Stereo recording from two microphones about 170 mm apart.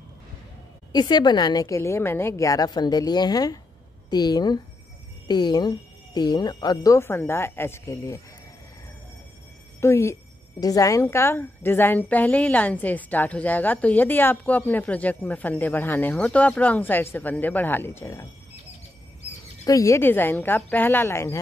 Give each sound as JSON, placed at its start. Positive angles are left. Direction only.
{"t": 0.9, "sound": "speech", "side_deg": 25}
{"t": 9.8, "sound": "a woman's voice", "side_deg": 15}
{"t": 19.6, "sound": "a woman's voice", "side_deg": 20}